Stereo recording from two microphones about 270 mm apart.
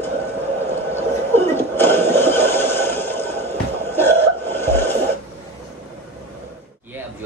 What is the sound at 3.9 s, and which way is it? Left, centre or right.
Laughter, centre.